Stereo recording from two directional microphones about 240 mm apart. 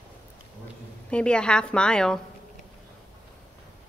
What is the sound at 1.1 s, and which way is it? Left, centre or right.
A woman's voice, centre.